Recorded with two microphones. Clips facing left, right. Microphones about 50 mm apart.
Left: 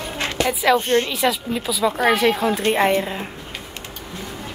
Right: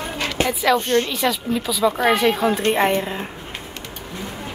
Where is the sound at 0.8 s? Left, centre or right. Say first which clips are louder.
Even; left.